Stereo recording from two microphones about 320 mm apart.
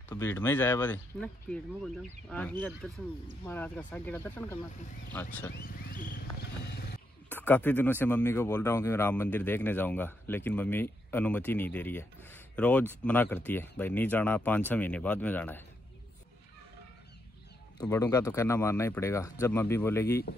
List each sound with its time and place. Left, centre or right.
0.1 s speech: centre
5.5 s a sound: left
7.2 s speech: centre
17.7 s speech: centre